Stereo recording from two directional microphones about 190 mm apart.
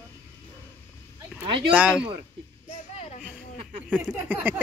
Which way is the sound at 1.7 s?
5° right (ahead or behind).